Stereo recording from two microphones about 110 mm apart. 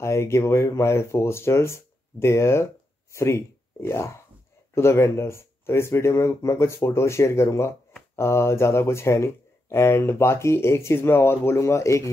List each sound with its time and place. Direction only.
0.0 s speech: 25° left (ahead or behind)